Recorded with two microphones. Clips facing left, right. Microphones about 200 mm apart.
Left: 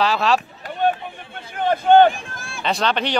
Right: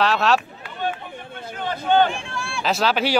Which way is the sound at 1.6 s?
50° left (ahead or behind).